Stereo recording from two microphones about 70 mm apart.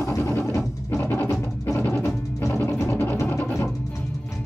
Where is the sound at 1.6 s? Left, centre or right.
Left.